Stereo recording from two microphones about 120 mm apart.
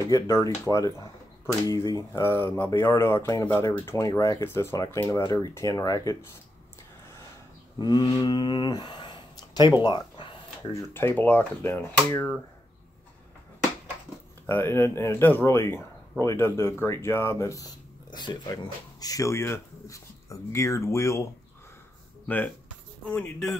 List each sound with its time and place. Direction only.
0.1 s speech: 30° left (ahead or behind)
7.8 s speech: 35° left (ahead or behind)
9.8 s a sound: 40° left (ahead or behind)
10.7 s speech: 20° left (ahead or behind)
14.4 s speech: 15° left (ahead or behind)
23.0 s speech: 10° left (ahead or behind)